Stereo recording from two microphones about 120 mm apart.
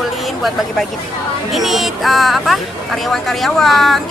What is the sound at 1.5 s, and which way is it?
Speech, centre (ahead or behind).